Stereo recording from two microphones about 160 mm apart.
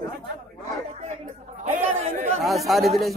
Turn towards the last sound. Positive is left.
turn(degrees=0)  # may be behind; listen again after turning